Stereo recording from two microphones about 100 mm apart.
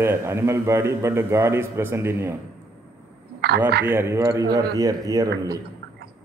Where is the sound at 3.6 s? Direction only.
20° right (ahead or behind); by 5.3 s 40° right (ahead or behind).